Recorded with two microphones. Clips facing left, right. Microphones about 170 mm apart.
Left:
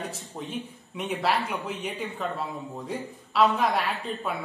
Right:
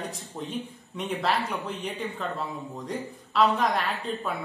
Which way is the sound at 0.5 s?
5° left (ahead or behind).